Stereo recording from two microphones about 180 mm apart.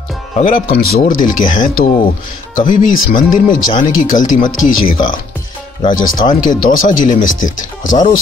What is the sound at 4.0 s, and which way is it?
Speech, 45° left (ahead or behind).